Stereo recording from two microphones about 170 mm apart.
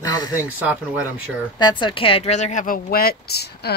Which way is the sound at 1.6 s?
25° left (ahead or behind).